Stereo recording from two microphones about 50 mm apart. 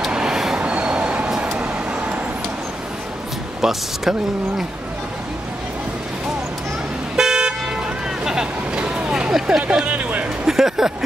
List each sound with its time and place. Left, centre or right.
0.1 s train: centre
0.6 s train: right
1.4 s vehicle: right
3.6 s speech: centre
7.2 s car: centre
8.2 s vehicle: centre
9.6 s speech: right
10.4 s a sound: centre